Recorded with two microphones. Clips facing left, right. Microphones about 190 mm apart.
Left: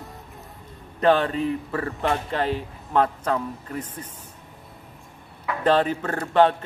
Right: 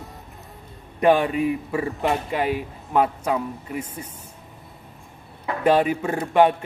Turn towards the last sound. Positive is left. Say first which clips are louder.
# right 1 dB
turn(degrees=-10)  # may be behind; listen again after turning